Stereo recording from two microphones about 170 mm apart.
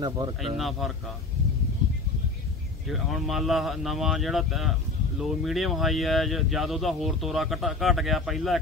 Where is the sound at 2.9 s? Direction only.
Centre (ahead or behind).